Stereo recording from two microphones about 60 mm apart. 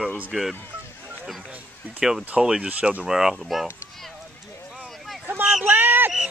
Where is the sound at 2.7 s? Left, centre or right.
Right.